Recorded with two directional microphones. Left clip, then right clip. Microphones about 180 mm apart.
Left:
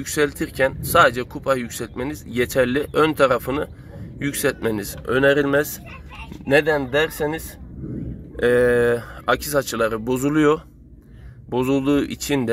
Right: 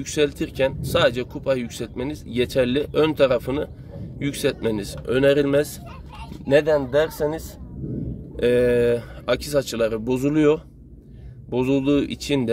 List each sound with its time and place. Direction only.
0.0 s speech: centre (ahead or behind)
6.7 s speech: 25° left (ahead or behind)
8.4 s speech: centre (ahead or behind)